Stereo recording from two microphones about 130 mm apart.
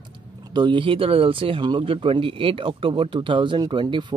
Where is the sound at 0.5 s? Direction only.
35° right (ahead or behind).